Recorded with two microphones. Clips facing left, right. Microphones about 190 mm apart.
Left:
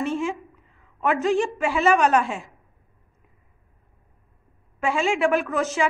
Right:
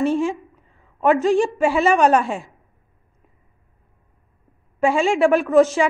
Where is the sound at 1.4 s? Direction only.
35° right (ahead or behind).